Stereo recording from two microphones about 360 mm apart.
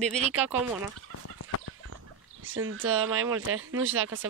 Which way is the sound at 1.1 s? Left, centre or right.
Left.